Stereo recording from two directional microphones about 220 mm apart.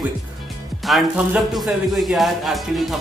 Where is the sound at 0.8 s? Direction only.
Centre (ahead or behind).